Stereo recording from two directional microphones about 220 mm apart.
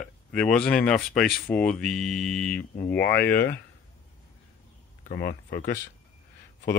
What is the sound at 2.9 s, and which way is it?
Speech, 45° left (ahead or behind).